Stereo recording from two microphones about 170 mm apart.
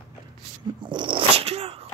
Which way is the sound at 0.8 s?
25° right (ahead or behind).